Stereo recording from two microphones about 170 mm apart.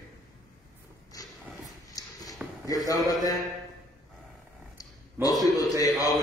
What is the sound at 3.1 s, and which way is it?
Speech, 20° left (ahead or behind).